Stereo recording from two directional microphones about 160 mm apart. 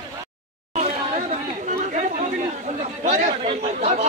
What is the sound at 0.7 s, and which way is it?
Chatter, 45° right (ahead or behind).